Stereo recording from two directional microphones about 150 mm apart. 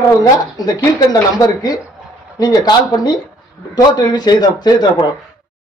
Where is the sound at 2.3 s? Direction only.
25° left (ahead or behind).